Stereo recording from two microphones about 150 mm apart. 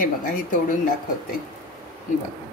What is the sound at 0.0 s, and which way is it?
Speech, 60° left (ahead or behind).